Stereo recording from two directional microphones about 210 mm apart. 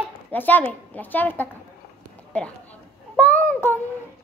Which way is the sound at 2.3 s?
5° left (ahead or behind).